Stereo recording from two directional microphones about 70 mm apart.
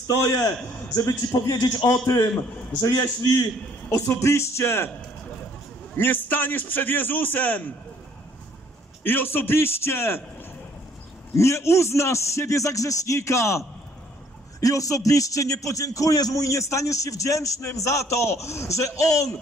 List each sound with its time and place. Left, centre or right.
0.0 s a man's voice: left
1.9 s a man's voice: left
2.8 s a man's voice: left
3.9 s a man's voice: left
5.9 s a man's voice: left
9.0 s a man's voice: left
11.3 s a man's voice: left